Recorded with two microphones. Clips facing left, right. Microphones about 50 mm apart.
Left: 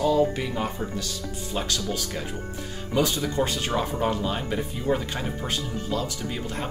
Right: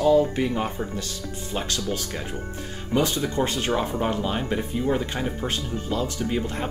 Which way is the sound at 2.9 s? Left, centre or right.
Right.